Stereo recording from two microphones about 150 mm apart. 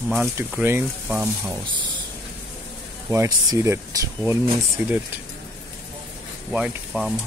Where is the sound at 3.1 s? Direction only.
20° right (ahead or behind).